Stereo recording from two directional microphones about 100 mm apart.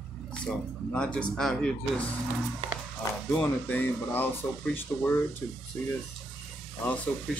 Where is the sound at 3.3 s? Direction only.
10° left (ahead or behind).